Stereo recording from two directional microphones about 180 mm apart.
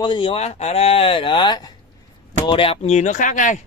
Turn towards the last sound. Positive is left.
turn(degrees=45)  # may be behind; listen again after turning